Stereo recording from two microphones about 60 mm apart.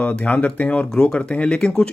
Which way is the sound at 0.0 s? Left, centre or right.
Left.